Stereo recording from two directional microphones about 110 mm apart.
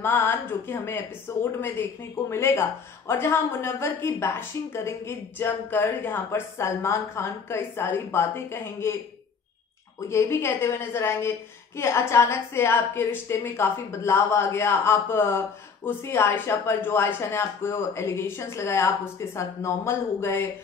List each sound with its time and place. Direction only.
0.0 s a woman's voice: 15° left (ahead or behind)
10.0 s a woman's voice: 25° left (ahead or behind)